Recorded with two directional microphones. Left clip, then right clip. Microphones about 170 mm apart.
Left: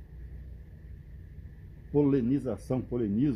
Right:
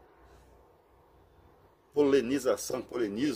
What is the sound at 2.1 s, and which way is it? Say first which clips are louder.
Speech: right 3 dB; 5° right (ahead or behind).